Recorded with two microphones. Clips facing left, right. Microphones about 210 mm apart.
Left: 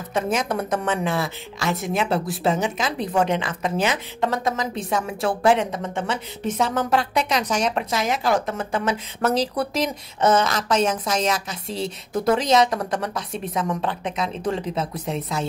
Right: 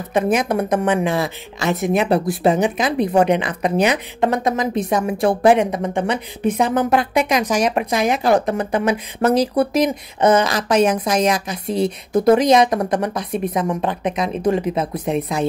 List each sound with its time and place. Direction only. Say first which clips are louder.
0.1 s a woman's voice: right 6 dB; 10° right (ahead or behind)